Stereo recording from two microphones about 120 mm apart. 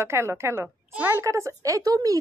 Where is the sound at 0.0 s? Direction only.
20° right (ahead or behind).